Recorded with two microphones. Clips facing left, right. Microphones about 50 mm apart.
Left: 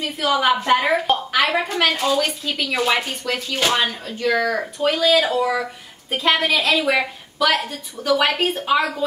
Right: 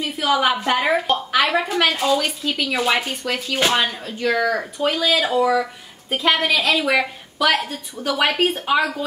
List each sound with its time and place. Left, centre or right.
0.0 s a woman's voice: centre